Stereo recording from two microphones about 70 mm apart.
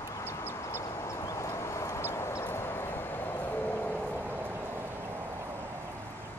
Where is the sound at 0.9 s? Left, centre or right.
Left.